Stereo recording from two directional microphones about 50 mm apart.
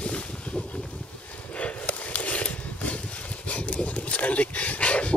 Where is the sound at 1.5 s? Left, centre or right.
Left.